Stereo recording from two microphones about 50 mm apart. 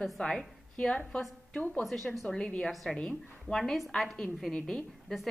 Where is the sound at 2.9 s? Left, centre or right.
Centre.